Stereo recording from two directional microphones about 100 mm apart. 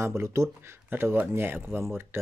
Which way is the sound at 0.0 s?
30° right (ahead or behind).